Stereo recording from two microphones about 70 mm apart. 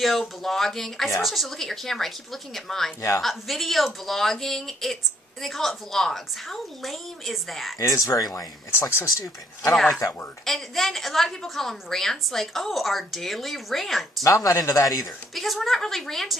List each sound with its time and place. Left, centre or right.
0.0 s a woman's voice: centre
7.8 s speech: left
8.7 s speech: left
10.4 s a woman's voice: centre
14.2 s speech: left
15.3 s a woman's voice: centre